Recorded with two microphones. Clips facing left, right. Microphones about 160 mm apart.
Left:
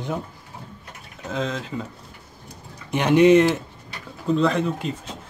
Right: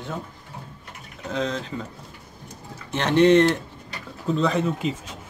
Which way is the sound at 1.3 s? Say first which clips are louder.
Even; centre (ahead or behind).